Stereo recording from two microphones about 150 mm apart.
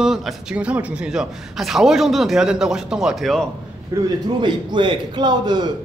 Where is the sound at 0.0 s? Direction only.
Centre (ahead or behind).